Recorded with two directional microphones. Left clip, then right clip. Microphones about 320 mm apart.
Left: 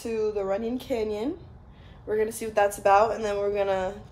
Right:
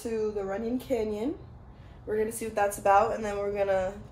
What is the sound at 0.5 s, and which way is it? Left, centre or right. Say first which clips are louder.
Speech: left 3 dB; centre.